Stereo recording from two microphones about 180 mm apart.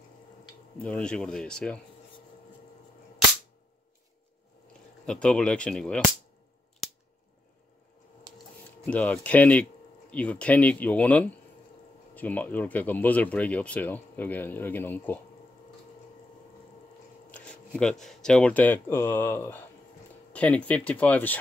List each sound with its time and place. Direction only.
0.7 s speech: 5° left (ahead or behind)
5.0 s speech: 5° left (ahead or behind)
8.3 s a sound: 20° right (ahead or behind)
8.8 s speech: 10° left (ahead or behind)
17.3 s speech: 5° left (ahead or behind)